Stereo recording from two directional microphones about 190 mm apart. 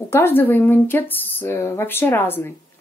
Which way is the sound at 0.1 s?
10° left (ahead or behind).